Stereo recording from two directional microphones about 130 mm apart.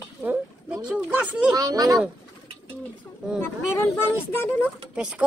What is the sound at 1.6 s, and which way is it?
Speech, 30° right (ahead or behind).